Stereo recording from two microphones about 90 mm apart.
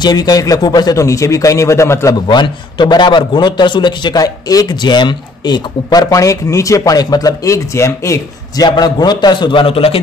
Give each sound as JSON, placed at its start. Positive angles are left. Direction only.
{"t": 0.0, "sound": "a man's voice", "side_deg": 50}
{"t": 1.0, "sound": "a man's voice", "side_deg": 35}
{"t": 2.2, "sound": "a man's voice", "side_deg": 55}
{"t": 8.6, "sound": "a man's voice", "side_deg": 50}